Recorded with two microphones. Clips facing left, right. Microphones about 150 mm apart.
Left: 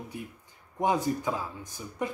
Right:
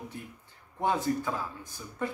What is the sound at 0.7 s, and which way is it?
Speech, 15° left (ahead or behind).